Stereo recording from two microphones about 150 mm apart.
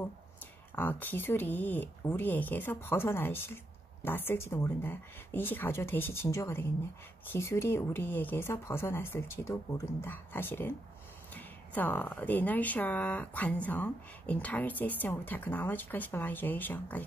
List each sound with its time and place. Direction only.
0.7 s speech: 10° left (ahead or behind)